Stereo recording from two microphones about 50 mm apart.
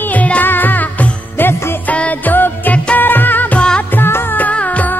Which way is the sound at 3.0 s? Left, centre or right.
Left.